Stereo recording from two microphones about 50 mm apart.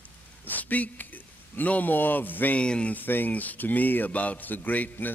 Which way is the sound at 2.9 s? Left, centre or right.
Left.